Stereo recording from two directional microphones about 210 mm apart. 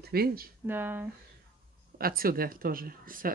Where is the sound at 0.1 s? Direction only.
45° right (ahead or behind).